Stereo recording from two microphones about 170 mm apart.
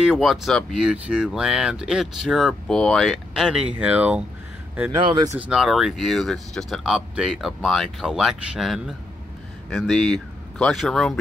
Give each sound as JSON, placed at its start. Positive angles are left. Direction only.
{"t": 0.0, "sound": "speech", "side_deg": 0}
{"t": 5.0, "sound": "speech", "side_deg": -30}
{"t": 5.5, "sound": "speech", "side_deg": 0}